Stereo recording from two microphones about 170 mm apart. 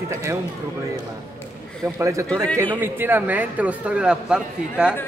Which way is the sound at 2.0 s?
15° right (ahead or behind).